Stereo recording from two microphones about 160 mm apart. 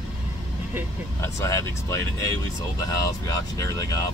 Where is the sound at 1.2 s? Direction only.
20° left (ahead or behind).